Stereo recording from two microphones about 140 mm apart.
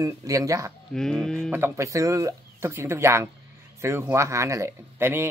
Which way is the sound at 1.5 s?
20° right (ahead or behind).